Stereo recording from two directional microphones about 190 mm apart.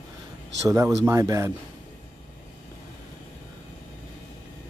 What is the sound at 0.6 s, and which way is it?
Speech, 15° right (ahead or behind).